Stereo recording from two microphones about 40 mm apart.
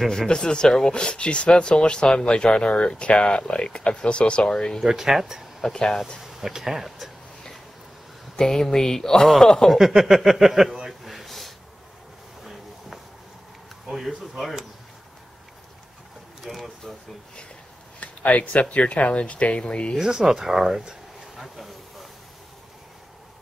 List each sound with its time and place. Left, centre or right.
0.3 s speech: left
4.8 s speech: centre
5.6 s speech: centre
6.2 s speech: centre
8.4 s speech: centre
9.7 s speech: centre
10.9 s a sound: centre
13.8 s speech: centre
16.4 s speech: centre
18.0 s speech: left
20.0 s speech: centre